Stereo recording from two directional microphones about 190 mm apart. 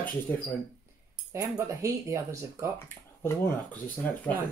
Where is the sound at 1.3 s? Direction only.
15° right (ahead or behind).